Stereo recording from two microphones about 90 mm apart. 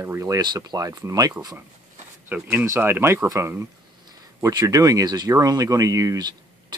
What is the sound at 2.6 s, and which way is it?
Speech, 25° right (ahead or behind).